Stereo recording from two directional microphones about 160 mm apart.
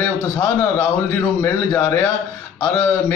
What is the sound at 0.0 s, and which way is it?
A man's voice, 10° left (ahead or behind).